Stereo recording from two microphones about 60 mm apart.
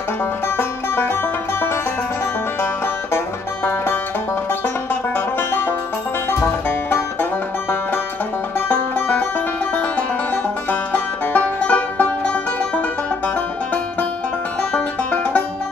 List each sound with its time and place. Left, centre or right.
0.6 s music: left
3.6 s music: left
5.1 s music: left
8.5 s music: left
14.6 s music: centre